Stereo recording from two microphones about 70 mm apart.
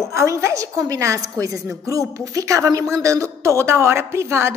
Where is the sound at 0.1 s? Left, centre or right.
Right.